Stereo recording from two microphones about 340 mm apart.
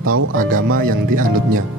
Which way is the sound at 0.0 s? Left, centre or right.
Right.